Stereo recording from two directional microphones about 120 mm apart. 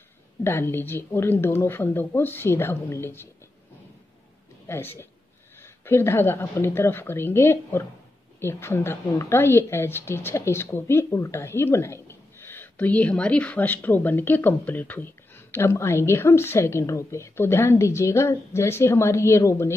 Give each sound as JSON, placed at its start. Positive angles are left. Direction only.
{"t": 0.4, "sound": "a woman's voice", "side_deg": 20}
{"t": 4.6, "sound": "a woman's voice", "side_deg": 20}